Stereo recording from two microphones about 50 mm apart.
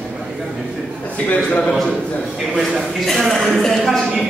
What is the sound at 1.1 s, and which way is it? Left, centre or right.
Speech, left.